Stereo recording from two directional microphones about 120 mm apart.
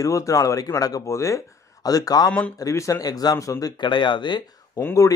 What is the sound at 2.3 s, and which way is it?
Speech, 10° left (ahead or behind).